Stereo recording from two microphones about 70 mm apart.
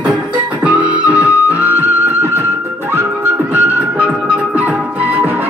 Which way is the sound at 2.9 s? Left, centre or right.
Right.